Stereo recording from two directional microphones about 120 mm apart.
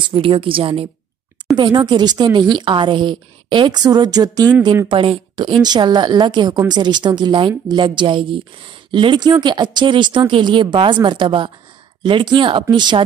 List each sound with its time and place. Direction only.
0.1 s a woman's voice: 45° right (ahead or behind)
4.8 s a woman's voice: 45° right (ahead or behind)